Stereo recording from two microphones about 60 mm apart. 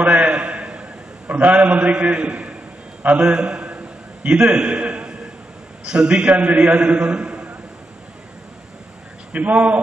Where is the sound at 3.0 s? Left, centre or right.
Right.